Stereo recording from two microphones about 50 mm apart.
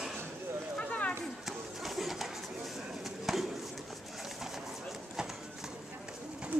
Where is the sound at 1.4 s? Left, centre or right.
Centre.